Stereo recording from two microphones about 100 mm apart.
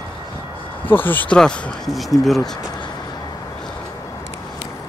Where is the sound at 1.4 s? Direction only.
5° left (ahead or behind).